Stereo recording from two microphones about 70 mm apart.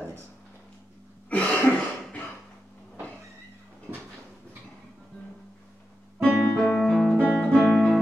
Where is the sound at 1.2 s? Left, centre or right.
Centre.